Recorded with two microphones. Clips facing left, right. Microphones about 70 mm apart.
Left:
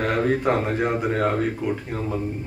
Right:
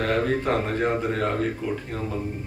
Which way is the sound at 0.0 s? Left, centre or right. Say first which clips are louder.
Left 2 dB; centre.